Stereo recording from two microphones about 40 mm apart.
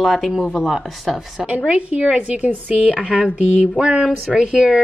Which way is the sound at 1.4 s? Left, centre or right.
Right.